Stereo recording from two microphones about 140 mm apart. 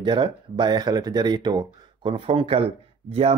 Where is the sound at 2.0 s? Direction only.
45° right (ahead or behind).